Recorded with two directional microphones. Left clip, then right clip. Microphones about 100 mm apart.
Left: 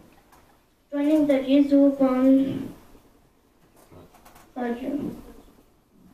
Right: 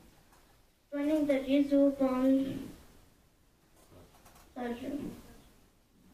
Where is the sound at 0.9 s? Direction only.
20° right (ahead or behind).